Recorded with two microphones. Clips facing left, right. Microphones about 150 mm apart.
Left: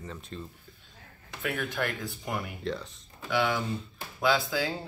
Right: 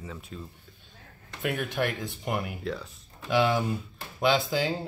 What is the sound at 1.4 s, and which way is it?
Speech, 20° right (ahead or behind).